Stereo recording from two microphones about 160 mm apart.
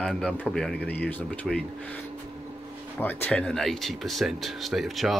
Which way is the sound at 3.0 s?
10° left (ahead or behind).